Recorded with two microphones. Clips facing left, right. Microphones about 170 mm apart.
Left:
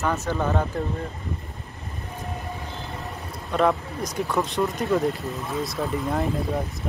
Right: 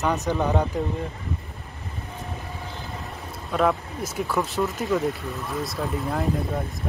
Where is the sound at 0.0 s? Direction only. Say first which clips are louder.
Right 1 dB; 15° right (ahead or behind).